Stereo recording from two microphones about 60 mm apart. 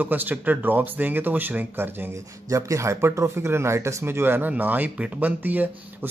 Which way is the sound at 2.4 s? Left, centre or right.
Right.